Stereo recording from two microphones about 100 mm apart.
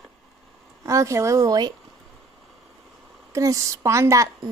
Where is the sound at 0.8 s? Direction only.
30° right (ahead or behind).